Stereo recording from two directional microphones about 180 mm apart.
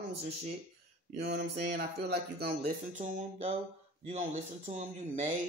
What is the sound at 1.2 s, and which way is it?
Speech, 70° right (ahead or behind).